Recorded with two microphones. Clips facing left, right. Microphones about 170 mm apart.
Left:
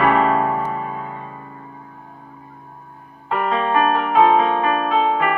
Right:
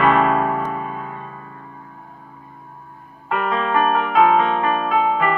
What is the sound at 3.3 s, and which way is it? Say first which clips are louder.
Music: left 1 dB; 20° left (ahead or behind).